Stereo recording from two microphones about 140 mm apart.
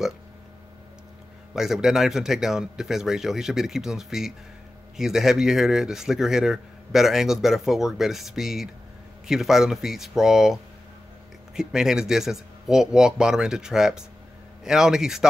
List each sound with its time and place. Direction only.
1.5 s speech: 5° right (ahead or behind)